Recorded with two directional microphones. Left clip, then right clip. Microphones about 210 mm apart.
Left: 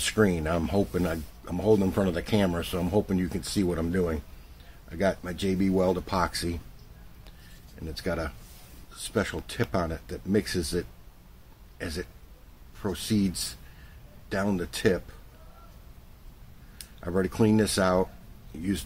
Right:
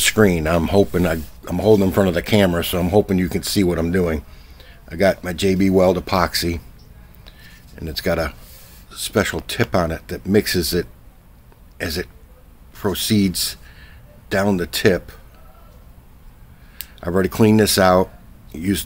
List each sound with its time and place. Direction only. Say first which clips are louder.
0.0 s speech: right 10 dB; 40° right (ahead or behind)
7.8 s speech: right 11 dB; 45° right (ahead or behind)
17.0 s speech: right 9 dB; 45° right (ahead or behind)